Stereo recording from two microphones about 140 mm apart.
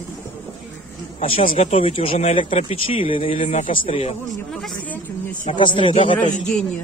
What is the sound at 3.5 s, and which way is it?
Speech, 65° left (ahead or behind).